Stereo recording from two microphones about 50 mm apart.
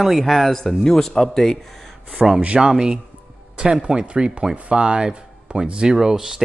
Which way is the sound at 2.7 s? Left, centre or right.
Centre.